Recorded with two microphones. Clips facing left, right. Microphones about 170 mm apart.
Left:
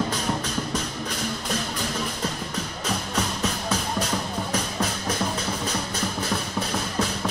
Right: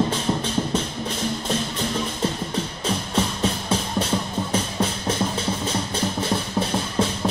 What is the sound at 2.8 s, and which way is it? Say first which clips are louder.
Music: right 3 dB; 30° right (ahead or behind).